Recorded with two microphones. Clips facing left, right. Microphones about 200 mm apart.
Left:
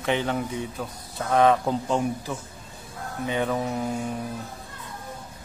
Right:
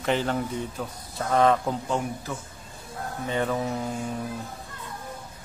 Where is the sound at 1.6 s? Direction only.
15° left (ahead or behind).